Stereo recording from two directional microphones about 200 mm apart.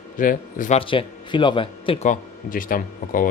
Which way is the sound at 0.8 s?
25° left (ahead or behind).